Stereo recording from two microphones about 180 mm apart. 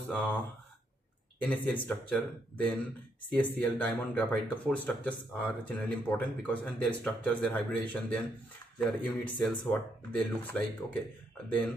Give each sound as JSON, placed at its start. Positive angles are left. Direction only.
{"t": 0.1, "sound": "speech", "side_deg": 10}
{"t": 1.4, "sound": "speech", "side_deg": 5}